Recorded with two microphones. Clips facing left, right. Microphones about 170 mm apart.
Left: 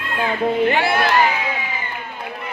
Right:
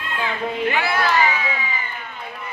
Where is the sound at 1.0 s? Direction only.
55° left (ahead or behind).